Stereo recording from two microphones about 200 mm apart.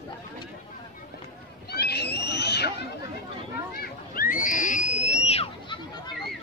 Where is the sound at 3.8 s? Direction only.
45° left (ahead or behind); by 6.1 s 25° left (ahead or behind).